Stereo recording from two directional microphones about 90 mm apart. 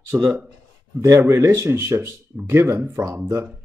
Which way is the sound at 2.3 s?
25° right (ahead or behind).